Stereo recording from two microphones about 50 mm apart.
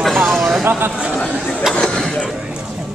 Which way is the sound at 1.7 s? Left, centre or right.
Centre.